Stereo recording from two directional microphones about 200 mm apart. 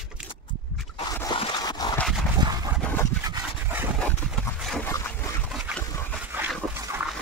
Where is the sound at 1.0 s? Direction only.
20° left (ahead or behind).